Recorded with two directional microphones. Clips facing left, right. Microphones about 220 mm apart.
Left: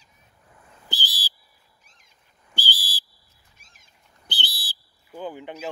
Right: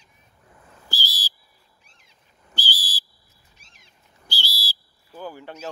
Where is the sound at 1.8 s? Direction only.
45° left (ahead or behind).